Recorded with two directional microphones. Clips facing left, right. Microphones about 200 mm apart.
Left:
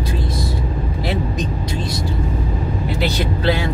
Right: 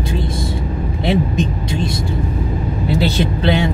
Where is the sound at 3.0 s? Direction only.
25° right (ahead or behind).